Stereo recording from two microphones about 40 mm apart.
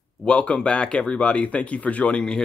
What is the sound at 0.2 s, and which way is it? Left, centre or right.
Speech, left.